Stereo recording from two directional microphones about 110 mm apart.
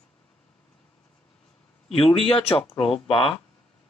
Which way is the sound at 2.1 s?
55° left (ahead or behind).